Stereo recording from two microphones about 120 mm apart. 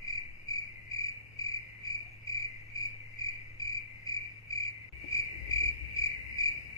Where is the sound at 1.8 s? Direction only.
30° left (ahead or behind).